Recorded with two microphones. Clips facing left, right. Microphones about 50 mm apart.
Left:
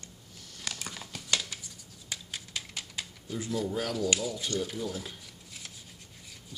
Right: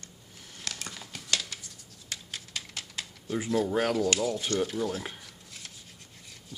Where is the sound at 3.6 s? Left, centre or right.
Right.